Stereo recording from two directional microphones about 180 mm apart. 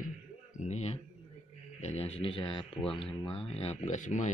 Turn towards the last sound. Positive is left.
turn(degrees=40)  # may be behind; listen again after turning